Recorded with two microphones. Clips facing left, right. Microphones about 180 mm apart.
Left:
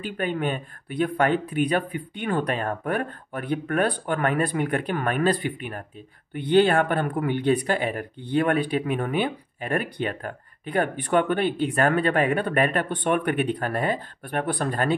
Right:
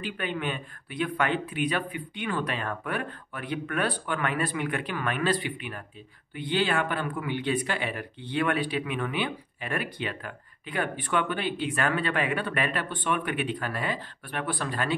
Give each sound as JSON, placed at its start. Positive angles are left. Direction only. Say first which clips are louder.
{"t": 0.2, "sound": "speech", "louder": "left 7 dB", "side_deg": 45}